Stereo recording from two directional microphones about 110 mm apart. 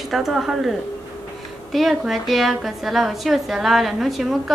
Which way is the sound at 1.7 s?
Centre (ahead or behind).